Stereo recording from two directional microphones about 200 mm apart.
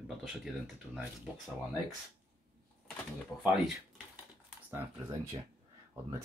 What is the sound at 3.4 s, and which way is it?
Speech, centre (ahead or behind).